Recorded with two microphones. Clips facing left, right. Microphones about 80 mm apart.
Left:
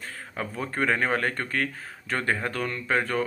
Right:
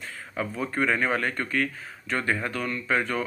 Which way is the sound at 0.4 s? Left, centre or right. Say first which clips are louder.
Right 2 dB; left.